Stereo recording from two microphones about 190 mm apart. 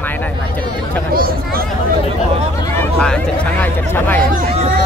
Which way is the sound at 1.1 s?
50° right (ahead or behind).